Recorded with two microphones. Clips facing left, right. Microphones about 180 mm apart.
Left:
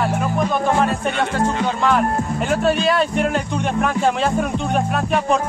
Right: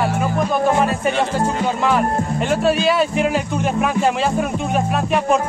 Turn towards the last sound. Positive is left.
turn(degrees=0)  # may be behind; listen again after turning